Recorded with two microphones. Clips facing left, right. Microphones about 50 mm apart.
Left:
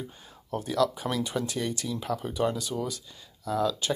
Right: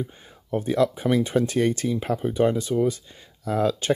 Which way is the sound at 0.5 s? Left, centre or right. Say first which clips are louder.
Right 5 dB; right.